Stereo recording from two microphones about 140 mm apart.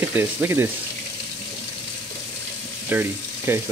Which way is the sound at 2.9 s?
15° right (ahead or behind).